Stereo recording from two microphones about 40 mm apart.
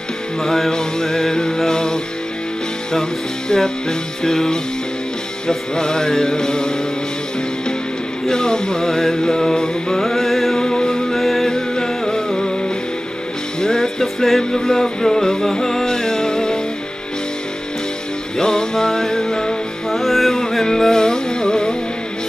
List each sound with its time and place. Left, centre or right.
0.4 s music: centre
8.3 s music: centre
10.6 s music: centre
13.6 s music: centre
18.4 s music: centre
19.9 s music: centre
20.3 s music: centre